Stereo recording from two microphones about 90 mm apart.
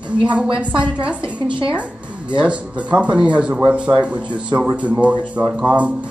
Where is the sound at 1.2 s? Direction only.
70° right (ahead or behind).